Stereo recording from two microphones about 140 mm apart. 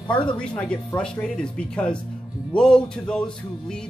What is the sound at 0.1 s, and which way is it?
Speech, 35° left (ahead or behind).